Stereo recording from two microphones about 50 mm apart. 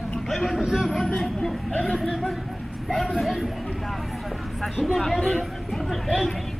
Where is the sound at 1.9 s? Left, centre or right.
Centre.